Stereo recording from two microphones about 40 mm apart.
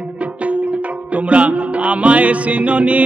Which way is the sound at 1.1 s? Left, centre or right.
Right.